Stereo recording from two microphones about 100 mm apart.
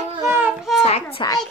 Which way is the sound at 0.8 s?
90° left.